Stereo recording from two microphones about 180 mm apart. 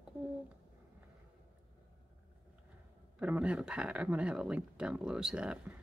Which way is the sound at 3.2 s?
5° right (ahead or behind).